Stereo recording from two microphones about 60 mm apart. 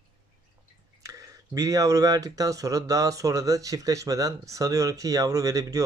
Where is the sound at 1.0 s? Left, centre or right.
Right.